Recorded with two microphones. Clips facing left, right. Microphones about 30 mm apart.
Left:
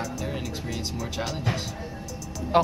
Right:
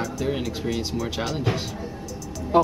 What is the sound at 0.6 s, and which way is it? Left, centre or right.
Speech, centre.